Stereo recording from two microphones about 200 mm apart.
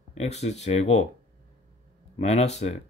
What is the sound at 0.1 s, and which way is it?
Speech, 35° left (ahead or behind).